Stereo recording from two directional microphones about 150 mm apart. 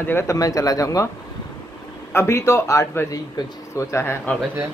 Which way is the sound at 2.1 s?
20° left (ahead or behind).